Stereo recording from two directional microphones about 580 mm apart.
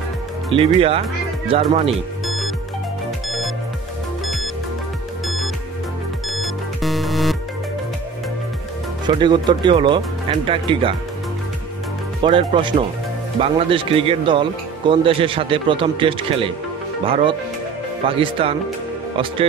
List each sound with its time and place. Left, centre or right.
0.5 s speech: centre
3.3 s music: centre
5.2 s music: centre
9.0 s speech: centre
12.2 s speech: centre